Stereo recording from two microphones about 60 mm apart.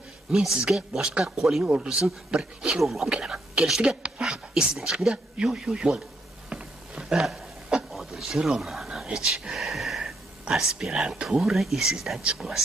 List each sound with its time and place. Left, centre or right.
0.3 s speech: centre
1.6 s speech: centre
2.8 s speech: centre
6.5 s a sound: centre
8.9 s whispering: centre
10.5 s speech: centre